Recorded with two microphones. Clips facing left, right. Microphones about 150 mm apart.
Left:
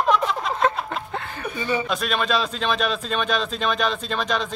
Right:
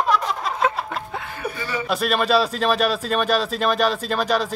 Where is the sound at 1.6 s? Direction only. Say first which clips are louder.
Left 6 dB; 20° left (ahead or behind).